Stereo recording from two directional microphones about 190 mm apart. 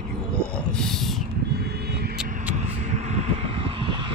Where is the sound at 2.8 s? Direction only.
35° right (ahead or behind).